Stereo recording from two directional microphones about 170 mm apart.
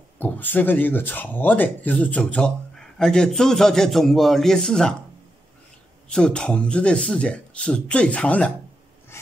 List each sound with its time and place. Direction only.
0.2 s speech: 10° left (ahead or behind)
6.0 s speech: 5° left (ahead or behind)
9.1 s a sound: 15° left (ahead or behind)